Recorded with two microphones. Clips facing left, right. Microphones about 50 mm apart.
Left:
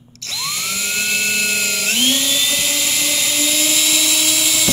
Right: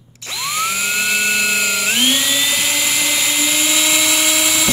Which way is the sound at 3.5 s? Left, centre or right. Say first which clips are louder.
Right 2 dB; right.